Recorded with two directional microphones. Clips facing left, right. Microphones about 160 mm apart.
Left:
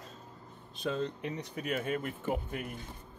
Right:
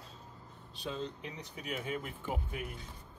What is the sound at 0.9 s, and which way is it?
Speech, 55° left (ahead or behind).